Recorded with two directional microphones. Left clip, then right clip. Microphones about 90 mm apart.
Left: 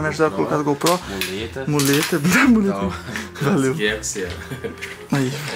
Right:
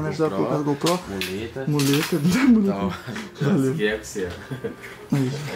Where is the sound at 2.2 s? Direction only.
45° right (ahead or behind).